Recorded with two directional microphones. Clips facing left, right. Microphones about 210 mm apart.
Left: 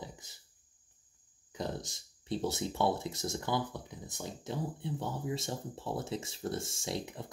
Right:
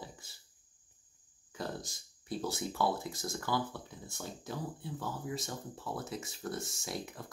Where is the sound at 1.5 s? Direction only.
20° left (ahead or behind).